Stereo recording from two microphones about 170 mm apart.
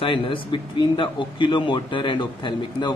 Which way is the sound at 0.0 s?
30° left (ahead or behind).